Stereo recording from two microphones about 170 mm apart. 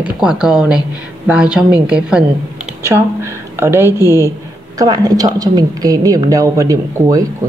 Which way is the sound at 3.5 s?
15° right (ahead or behind).